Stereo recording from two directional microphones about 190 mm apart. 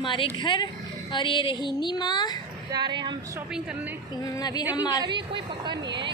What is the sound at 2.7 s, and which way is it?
Speech, 25° right (ahead or behind).